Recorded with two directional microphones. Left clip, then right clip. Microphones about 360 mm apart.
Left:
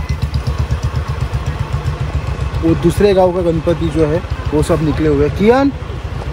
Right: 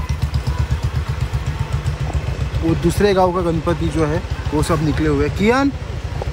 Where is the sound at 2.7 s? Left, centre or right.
Centre.